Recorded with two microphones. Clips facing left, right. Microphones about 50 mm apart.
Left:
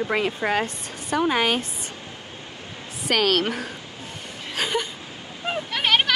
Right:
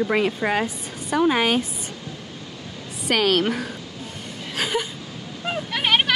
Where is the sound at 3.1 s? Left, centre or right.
Centre.